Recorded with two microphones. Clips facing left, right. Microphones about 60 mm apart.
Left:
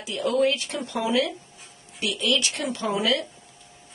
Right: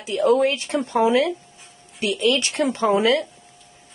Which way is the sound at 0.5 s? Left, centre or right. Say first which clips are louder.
Right 4 dB; right.